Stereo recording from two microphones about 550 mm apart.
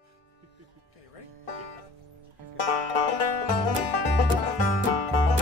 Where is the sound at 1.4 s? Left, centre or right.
Left.